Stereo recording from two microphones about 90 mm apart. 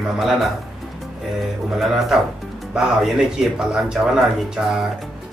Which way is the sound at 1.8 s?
Centre (ahead or behind).